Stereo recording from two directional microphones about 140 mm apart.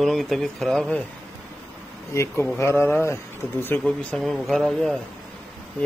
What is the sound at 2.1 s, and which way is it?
Speech, 20° left (ahead or behind).